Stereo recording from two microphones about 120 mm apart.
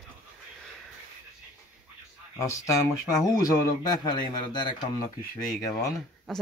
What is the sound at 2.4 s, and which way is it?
Speech, 25° left (ahead or behind).